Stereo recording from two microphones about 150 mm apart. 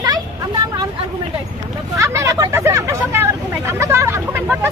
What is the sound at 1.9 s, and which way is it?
Speech, 20° right (ahead or behind).